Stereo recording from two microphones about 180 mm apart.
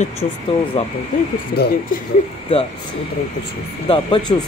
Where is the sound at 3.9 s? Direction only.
25° left (ahead or behind).